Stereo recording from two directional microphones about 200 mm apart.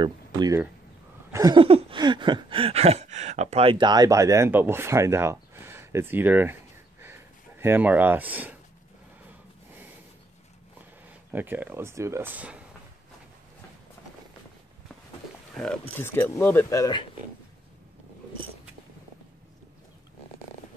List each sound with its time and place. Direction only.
0.0 s speech: 20° right (ahead or behind)
1.3 s a sound: 20° right (ahead or behind)
11.1 s speech: 10° right (ahead or behind)
15.5 s speech: 5° left (ahead or behind)